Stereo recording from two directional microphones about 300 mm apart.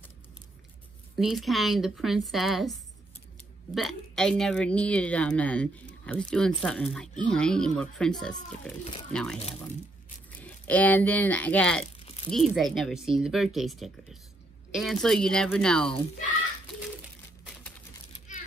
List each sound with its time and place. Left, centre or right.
1.1 s a woman's voice: centre
12.0 s crumpling: centre
12.3 s a woman's voice: centre
17.0 s a sound: centre